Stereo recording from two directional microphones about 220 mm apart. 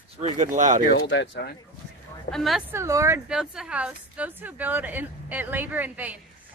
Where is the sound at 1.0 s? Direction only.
55° left (ahead or behind).